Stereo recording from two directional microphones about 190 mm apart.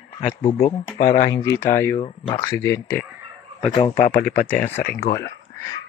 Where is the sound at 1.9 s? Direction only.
25° left (ahead or behind).